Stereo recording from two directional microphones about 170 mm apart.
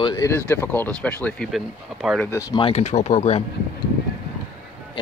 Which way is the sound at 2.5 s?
35° left (ahead or behind).